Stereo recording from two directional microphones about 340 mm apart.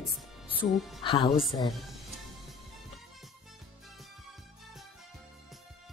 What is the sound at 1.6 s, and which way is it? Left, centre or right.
Speech, centre.